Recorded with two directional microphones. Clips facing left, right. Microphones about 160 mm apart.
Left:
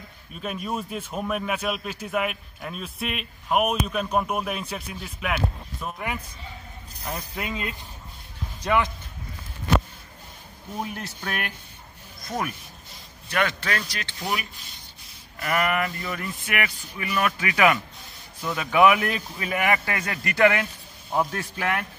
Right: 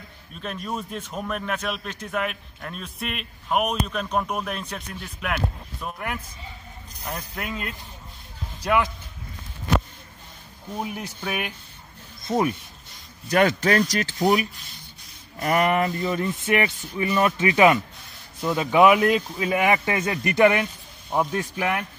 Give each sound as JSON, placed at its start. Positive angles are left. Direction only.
{"t": 0.3, "sound": "a man's voice", "side_deg": 5}
{"t": 8.5, "sound": "speech", "side_deg": -10}
{"t": 10.8, "sound": "speech", "side_deg": -15}
{"t": 12.2, "sound": "a sound", "side_deg": -25}
{"t": 13.3, "sound": "speech", "side_deg": -40}